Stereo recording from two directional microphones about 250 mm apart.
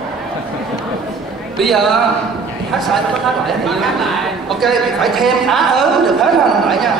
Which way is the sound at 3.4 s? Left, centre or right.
Centre.